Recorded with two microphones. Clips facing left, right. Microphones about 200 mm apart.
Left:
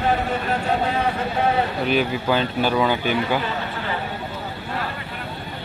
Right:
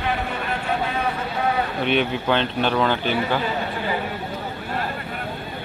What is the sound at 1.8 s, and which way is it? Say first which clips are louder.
A man's voice: right 2 dB; 5° left (ahead or behind).